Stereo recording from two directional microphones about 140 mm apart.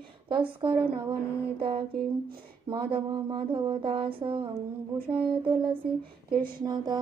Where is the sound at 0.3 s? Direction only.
35° right (ahead or behind).